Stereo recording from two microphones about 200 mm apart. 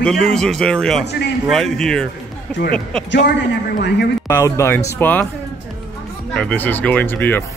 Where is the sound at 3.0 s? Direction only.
55° left (ahead or behind).